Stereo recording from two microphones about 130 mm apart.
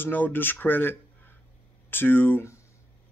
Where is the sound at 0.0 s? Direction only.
15° left (ahead or behind).